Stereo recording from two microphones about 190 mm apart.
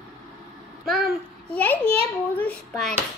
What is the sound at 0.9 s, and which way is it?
Speech, centre (ahead or behind).